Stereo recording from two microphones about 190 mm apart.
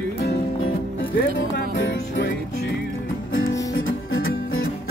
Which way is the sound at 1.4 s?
75° left (ahead or behind).